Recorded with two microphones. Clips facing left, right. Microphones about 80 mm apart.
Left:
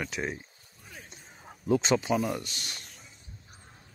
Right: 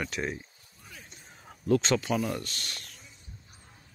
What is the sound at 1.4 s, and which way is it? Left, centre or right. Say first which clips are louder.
Speech: even; centre.